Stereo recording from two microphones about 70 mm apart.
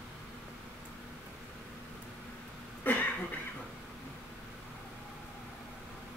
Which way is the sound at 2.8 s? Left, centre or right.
Left.